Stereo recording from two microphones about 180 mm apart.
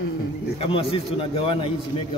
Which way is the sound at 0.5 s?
30° left (ahead or behind).